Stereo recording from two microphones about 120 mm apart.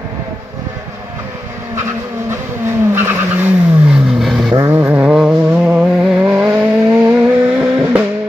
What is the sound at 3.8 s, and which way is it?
Vehicle, 5° right (ahead or behind).